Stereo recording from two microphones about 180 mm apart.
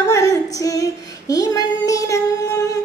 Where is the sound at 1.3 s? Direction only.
20° left (ahead or behind).